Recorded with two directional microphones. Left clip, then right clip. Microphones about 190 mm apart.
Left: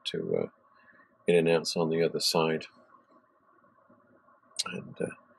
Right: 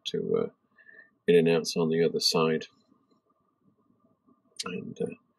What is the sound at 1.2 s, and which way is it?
Speech, centre (ahead or behind).